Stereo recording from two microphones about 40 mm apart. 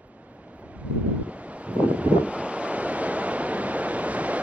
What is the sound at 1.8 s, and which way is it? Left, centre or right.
Waves, right.